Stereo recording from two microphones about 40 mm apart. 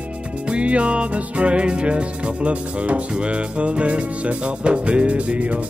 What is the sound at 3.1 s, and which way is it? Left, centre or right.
Speech, right.